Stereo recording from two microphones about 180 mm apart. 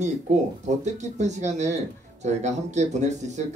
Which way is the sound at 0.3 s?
40° right (ahead or behind).